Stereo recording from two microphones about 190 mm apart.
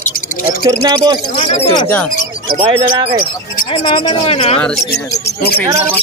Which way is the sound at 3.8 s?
25° left (ahead or behind).